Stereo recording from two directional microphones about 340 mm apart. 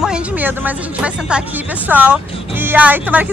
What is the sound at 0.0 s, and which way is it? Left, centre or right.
Speech, centre.